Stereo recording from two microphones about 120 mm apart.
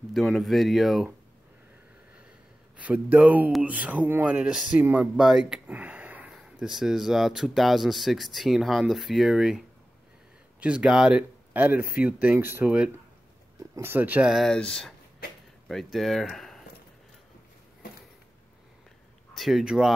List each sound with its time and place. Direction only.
0.1 s speech: centre (ahead or behind)
2.8 s speech: 10° right (ahead or behind)
14.3 s speech: 5° left (ahead or behind)
19.3 s speech: centre (ahead or behind)